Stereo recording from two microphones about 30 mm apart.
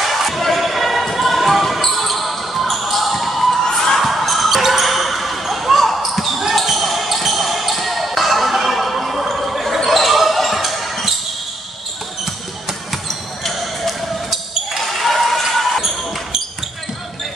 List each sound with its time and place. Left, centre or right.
0.0 s basketball bounce: centre
3.6 s a sound: left
4.0 s basketball bounce: centre
8.7 s a sound: centre
9.4 s basketball bounce: centre
13.1 s basketball bounce: centre
13.6 s basketball bounce: centre